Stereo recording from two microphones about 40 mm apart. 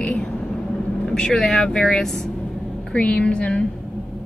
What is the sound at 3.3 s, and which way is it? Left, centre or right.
Speech, left.